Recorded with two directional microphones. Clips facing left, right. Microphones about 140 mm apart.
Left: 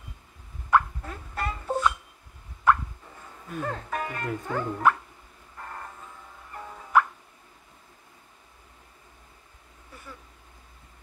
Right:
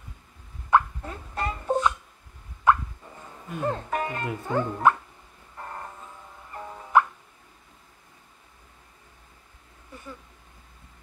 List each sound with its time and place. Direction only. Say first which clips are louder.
0.7 s a sound: right 1 dB; 15° right (ahead or behind)
3.6 s speech: right 5 dB; 15° right (ahead or behind)
5.6 s vehicle: right 2 dB; 15° right (ahead or behind)
6.5 s music: right 2 dB; 15° right (ahead or behind)